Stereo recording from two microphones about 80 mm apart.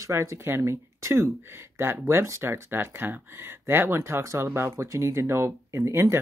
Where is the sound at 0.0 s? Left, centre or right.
Right.